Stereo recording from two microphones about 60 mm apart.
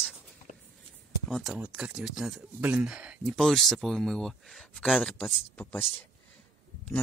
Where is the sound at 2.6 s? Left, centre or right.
Right.